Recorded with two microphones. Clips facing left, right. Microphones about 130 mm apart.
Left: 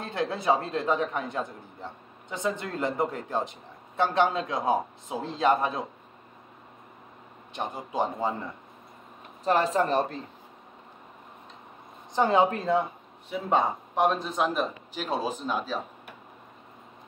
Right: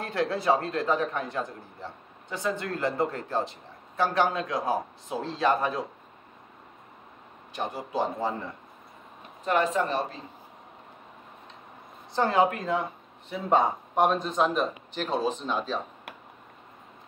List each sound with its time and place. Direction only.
0.0 s a man's voice: 20° left (ahead or behind)
7.5 s a man's voice: 20° left (ahead or behind)
9.4 s speech: 35° left (ahead or behind)
12.1 s a man's voice: 20° left (ahead or behind)
13.3 s speech: centre (ahead or behind)